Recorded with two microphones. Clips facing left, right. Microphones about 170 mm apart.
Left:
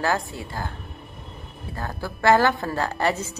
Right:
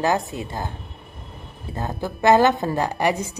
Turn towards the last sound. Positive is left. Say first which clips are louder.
# right 2 dB
turn(degrees=-15)  # may be behind; listen again after turning